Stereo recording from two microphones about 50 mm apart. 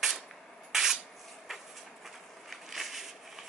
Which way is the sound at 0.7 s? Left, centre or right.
Centre.